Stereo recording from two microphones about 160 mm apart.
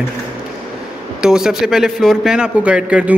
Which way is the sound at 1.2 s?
5° right (ahead or behind).